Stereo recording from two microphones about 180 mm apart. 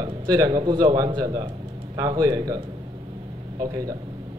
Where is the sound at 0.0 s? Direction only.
20° right (ahead or behind).